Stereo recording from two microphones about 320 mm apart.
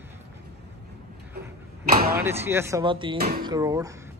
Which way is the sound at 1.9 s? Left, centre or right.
Right.